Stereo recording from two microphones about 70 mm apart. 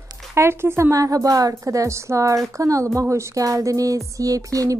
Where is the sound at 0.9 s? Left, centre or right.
Right.